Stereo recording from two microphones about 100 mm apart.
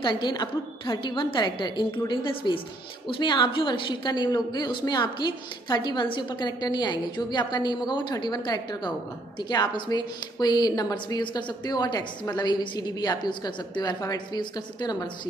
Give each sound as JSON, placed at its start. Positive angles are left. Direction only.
{"t": 0.0, "sound": "a woman's voice", "side_deg": 50}